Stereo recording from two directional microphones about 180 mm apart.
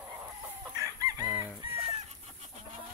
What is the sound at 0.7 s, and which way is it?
Chicken, 20° right (ahead or behind).